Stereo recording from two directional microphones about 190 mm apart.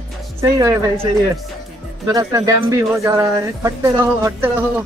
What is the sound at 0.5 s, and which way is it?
Speech, 15° right (ahead or behind).